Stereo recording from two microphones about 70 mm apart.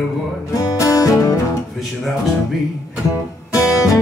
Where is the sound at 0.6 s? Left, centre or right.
Left.